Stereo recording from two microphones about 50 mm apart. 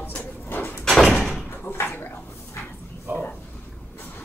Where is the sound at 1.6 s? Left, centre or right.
Left.